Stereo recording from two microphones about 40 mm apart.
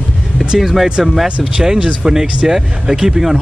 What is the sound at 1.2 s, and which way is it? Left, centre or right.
Speech, right.